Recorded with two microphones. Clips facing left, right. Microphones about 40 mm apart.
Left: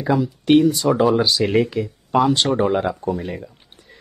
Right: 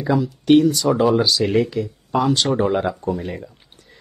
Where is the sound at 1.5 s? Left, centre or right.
Centre.